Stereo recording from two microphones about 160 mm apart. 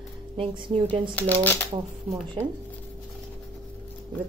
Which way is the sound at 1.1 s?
10° left (ahead or behind).